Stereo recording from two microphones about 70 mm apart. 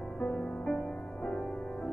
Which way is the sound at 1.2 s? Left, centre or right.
Centre.